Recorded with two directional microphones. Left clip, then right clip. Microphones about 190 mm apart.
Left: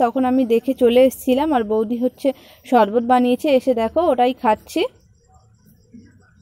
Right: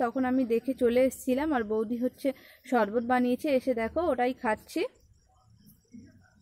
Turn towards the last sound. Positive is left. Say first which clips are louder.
# left 12 dB
turn(degrees=25)  # may be behind; listen again after turning